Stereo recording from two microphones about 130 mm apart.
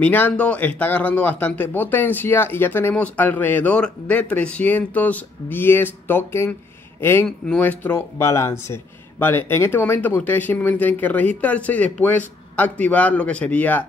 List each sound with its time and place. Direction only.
0.0 s speech: 15° left (ahead or behind)